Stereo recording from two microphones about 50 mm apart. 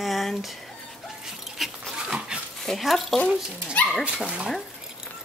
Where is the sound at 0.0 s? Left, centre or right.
Centre.